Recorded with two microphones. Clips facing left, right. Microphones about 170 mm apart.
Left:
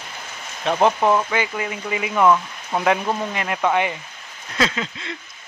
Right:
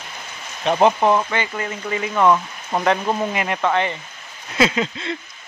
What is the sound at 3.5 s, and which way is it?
Speech, 10° left (ahead or behind).